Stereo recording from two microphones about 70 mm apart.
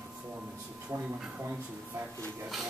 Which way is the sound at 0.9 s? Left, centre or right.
Right.